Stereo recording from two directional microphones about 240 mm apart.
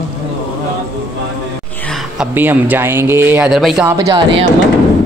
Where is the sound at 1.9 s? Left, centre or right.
Centre.